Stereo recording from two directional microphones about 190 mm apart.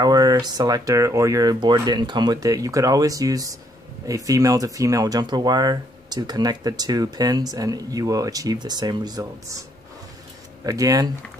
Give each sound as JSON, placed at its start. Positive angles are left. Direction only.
{"t": 0.0, "sound": "speech", "side_deg": -20}
{"t": 10.6, "sound": "speech", "side_deg": -20}